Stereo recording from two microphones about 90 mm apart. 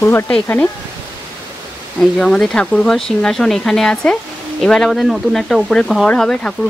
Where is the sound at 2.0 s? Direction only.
5° left (ahead or behind).